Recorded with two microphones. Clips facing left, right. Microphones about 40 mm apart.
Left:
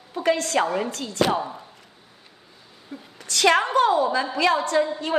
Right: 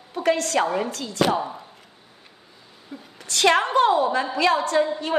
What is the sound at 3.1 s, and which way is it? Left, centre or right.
A woman's voice, right.